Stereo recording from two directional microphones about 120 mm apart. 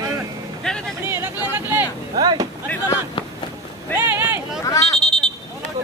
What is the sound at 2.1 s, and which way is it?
Speech, 35° right (ahead or behind).